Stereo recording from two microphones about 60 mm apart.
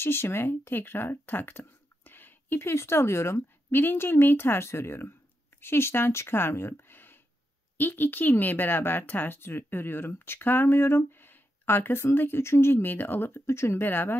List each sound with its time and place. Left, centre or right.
0.0 s speech: left
13.5 s speech: left